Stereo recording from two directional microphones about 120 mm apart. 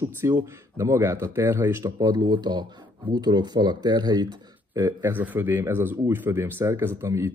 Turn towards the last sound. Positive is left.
turn(degrees=-20)  # may be behind; listen again after turning